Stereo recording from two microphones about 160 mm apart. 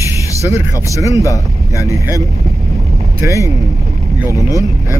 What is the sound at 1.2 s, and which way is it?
Speech, 20° left (ahead or behind).